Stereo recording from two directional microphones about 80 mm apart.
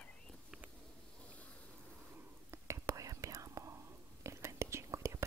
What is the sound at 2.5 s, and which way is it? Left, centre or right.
Whispering, right.